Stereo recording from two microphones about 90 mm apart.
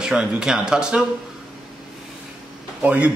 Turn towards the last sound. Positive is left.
turn(degrees=-15)  # may be behind; listen again after turning